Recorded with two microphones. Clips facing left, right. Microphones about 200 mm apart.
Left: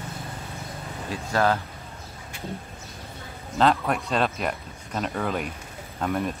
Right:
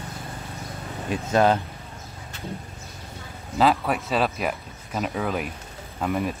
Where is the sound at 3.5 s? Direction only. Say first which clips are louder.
Right 1 dB; 5° right (ahead or behind).